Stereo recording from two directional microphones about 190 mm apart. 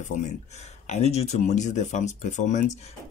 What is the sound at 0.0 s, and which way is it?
Speech, 40° left (ahead or behind).